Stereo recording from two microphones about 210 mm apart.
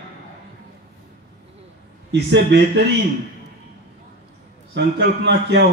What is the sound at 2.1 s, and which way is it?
Speech, 55° right (ahead or behind).